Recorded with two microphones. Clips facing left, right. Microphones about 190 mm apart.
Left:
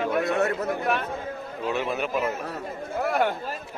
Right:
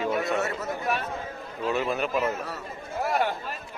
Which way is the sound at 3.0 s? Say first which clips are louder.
Left 2 dB; 55° left (ahead or behind).